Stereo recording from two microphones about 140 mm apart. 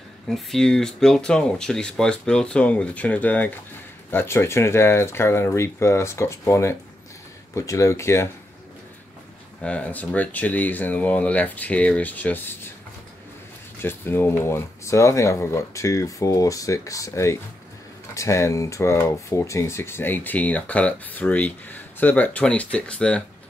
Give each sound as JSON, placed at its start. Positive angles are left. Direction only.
{"t": 0.3, "sound": "speech", "side_deg": 5}
{"t": 9.6, "sound": "speech", "side_deg": 10}
{"t": 13.7, "sound": "speech", "side_deg": 15}